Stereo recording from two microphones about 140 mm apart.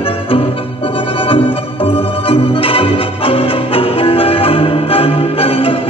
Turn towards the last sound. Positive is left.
turn(degrees=40)  # may be behind; listen again after turning